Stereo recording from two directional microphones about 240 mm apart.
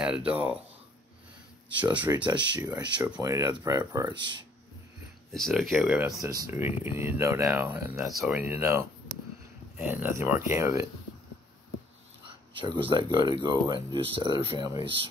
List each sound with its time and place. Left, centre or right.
0.0 s speech: centre
1.8 s speech: centre
5.3 s speech: centre
12.5 s speech: centre